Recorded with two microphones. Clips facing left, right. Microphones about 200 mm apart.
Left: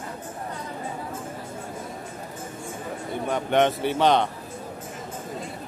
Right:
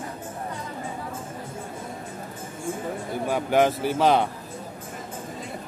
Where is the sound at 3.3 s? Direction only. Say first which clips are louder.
Right 1 dB; 5° right (ahead or behind).